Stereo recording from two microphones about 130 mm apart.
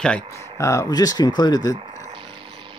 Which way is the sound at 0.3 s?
25° left (ahead or behind).